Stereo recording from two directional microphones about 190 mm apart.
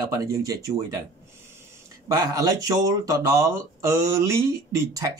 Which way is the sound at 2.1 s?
20° right (ahead or behind).